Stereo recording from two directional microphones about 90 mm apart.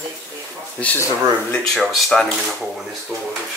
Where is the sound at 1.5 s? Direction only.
10° left (ahead or behind).